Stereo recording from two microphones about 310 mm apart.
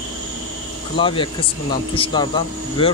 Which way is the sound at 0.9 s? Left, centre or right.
Centre.